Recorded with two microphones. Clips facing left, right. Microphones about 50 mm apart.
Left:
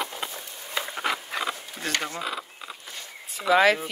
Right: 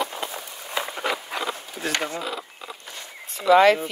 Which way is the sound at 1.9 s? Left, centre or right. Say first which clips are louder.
Right 2 dB; centre.